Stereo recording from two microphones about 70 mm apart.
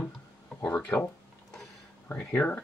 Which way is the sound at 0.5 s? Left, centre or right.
Left.